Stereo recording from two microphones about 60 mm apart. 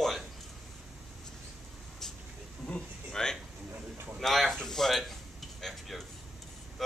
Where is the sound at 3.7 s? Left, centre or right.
Right.